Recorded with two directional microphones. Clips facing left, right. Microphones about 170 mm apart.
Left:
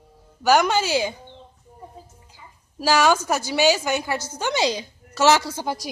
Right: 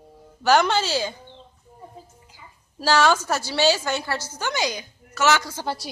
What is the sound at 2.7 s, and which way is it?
A woman's voice, 10° left (ahead or behind).